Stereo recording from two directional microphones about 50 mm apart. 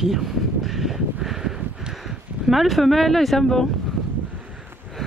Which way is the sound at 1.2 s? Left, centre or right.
Centre.